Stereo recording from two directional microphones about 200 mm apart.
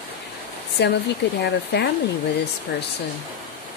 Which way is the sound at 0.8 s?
55° left (ahead or behind).